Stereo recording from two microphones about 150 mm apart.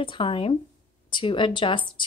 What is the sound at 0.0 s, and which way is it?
Speech, 35° left (ahead or behind).